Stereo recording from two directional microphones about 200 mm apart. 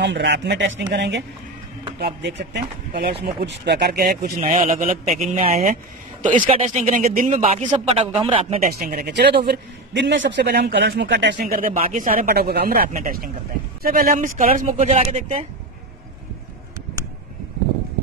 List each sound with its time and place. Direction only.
0.0 s speech: 60° right (ahead or behind)
4.4 s speech: 30° right (ahead or behind)
8.6 s speech: 50° right (ahead or behind)
11.3 s speech: 45° right (ahead or behind)